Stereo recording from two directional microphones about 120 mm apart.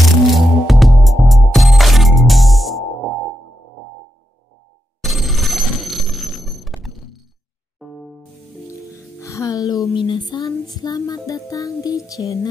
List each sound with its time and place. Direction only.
0.0 s music: centre (ahead or behind)
5.0 s telephone bell ringing: centre (ahead or behind)
7.8 s music: centre (ahead or behind)
8.9 s music: 25° left (ahead or behind)
9.9 s a sound: 45° left (ahead or behind)
10.4 s music: 30° left (ahead or behind)